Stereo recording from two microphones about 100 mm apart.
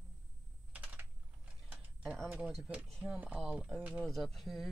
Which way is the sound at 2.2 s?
15° right (ahead or behind).